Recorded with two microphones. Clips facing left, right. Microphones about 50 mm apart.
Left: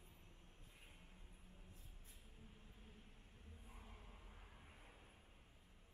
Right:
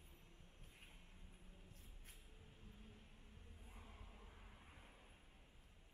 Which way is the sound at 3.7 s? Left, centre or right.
Centre.